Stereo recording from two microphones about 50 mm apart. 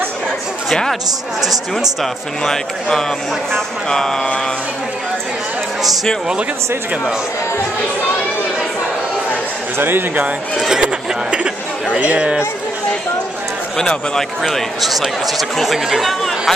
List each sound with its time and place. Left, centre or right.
2.4 s speech: centre
9.8 s speech: right
10.8 s speech: right
13.7 s speech: centre